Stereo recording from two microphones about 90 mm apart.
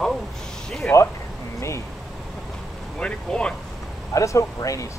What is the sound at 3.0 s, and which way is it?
Speech, 10° left (ahead or behind).